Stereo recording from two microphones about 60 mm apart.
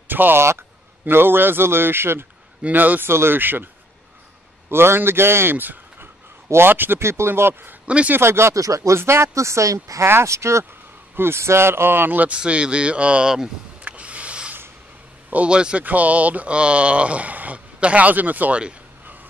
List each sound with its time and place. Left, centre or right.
0.1 s a man's voice: right
2.6 s a man's voice: right
3.1 s a man's voice: right
4.6 s a man's voice: right
7.0 s speech: right
7.8 s speech: right
8.1 s speech: right
8.5 s speech: right
8.9 s speech: right
10.0 s speech: right
12.3 s speech: centre
13.8 s a sound: right
15.2 s speech: right